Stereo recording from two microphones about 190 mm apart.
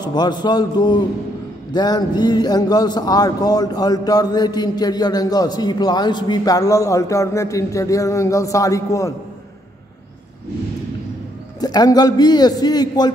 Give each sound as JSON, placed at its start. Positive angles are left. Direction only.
{"t": 0.0, "sound": "a man's voice", "side_deg": 20}
{"t": 11.6, "sound": "a man's voice", "side_deg": 20}